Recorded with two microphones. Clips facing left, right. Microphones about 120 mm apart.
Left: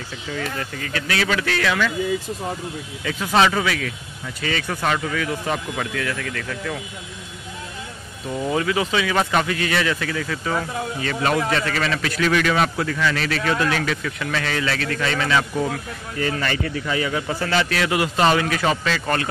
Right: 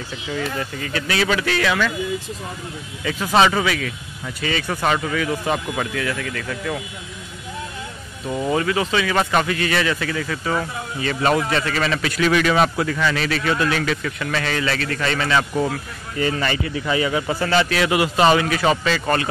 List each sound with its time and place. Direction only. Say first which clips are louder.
0.6 s speech: right 2 dB; 20° right (ahead or behind)
3.3 s speech: right 1 dB; 10° right (ahead or behind)
8.5 s speech: even; 5° left (ahead or behind)
16.2 s speech: right 2 dB; 10° right (ahead or behind)